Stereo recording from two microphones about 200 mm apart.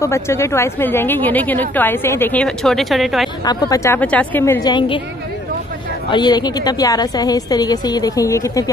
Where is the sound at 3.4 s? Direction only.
20° left (ahead or behind).